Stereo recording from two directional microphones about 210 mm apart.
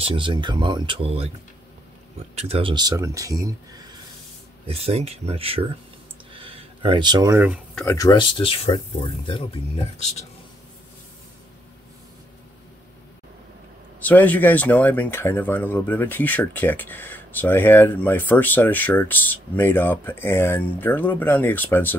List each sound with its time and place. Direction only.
0.0 s speech: 25° right (ahead or behind)
2.3 s speech: 30° right (ahead or behind)
4.6 s speech: 30° right (ahead or behind); by 7.6 s 10° right (ahead or behind)
7.7 s speech: 10° left (ahead or behind)
13.9 s speech: 5° left (ahead or behind)